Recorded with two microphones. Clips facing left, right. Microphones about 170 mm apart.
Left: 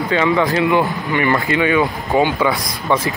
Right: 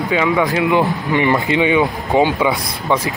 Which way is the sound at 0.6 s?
20° right (ahead or behind).